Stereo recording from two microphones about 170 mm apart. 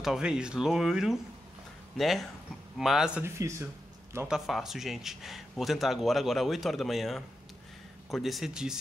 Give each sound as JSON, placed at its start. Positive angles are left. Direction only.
{"t": 0.0, "sound": "speech", "side_deg": -5}
{"t": 3.3, "sound": "speech", "side_deg": -15}
{"t": 4.3, "sound": "speech", "side_deg": 0}